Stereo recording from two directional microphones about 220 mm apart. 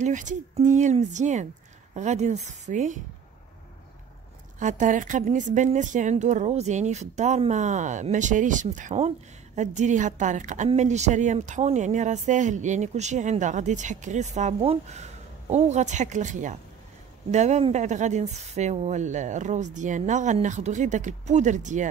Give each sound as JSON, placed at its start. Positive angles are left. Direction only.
{"t": 0.0, "sound": "a woman's voice", "side_deg": -35}
{"t": 4.6, "sound": "a woman's voice", "side_deg": -35}